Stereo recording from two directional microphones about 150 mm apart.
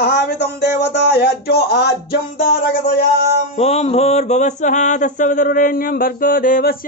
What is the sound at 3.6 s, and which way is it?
Mantra, 45° left (ahead or behind).